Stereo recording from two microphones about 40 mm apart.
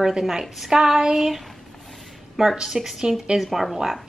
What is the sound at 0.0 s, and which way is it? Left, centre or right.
Speech, centre.